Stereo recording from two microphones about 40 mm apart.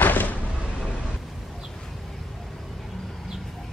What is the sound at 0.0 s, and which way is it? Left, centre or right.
Cupboard open or close, left.